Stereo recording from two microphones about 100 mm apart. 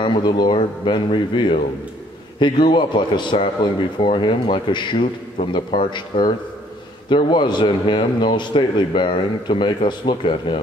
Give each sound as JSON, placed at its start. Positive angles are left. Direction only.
{"t": 0.0, "sound": "a man's voice", "side_deg": 55}